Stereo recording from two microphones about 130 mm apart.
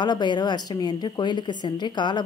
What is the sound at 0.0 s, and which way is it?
A woman's voice, 35° left (ahead or behind).